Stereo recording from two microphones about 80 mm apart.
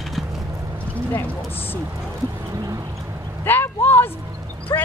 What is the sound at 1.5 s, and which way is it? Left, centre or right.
Speech, left.